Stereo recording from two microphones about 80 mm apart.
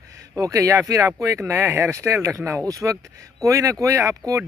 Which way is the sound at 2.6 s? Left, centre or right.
Right.